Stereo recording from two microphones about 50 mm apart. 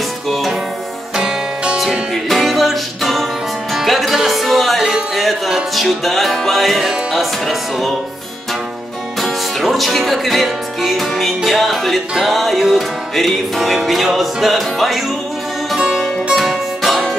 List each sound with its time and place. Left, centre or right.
0.3 s music: centre
1.1 s music: centre
2.2 s music: centre
9.2 s music: centre